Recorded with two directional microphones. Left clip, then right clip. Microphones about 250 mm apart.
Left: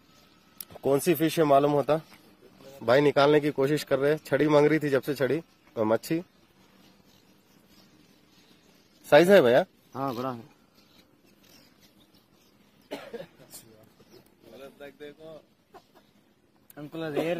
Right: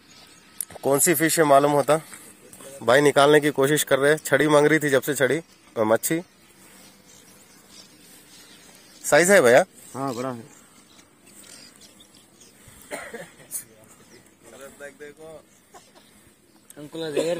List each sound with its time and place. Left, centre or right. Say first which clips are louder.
0.7 s speech: right 4 dB; centre
9.1 s speech: right 3 dB; centre
9.9 s a man's voice: right 3 dB; right
16.7 s speech: right 5 dB; left